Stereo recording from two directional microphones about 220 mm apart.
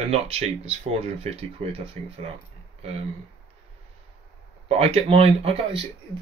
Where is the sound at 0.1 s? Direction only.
30° right (ahead or behind).